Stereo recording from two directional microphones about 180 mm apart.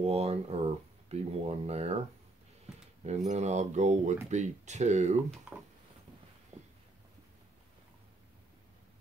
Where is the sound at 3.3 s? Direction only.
40° right (ahead or behind).